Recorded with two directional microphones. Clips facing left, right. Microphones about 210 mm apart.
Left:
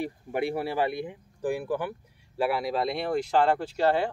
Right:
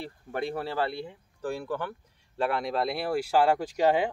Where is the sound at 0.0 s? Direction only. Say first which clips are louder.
Left 4 dB; 10° left (ahead or behind).